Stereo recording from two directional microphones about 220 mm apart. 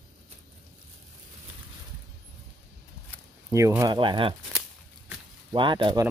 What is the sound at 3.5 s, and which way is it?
Speech, 15° right (ahead or behind).